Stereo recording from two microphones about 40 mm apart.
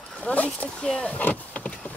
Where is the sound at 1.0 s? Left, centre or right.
Left.